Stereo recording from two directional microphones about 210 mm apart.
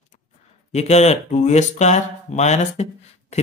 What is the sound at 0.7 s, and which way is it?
Speech, 30° left (ahead or behind).